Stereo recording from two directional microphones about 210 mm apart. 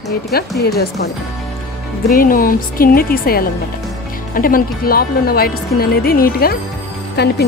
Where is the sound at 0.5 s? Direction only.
50° left (ahead or behind).